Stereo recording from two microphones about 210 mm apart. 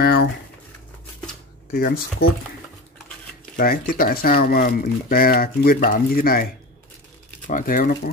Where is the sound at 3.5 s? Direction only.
45° left (ahead or behind).